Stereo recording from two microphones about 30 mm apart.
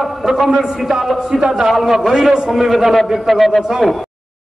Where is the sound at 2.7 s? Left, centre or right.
Centre.